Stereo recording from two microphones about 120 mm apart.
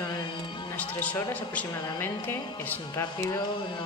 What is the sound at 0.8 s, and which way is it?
A woman's voice, 10° left (ahead or behind).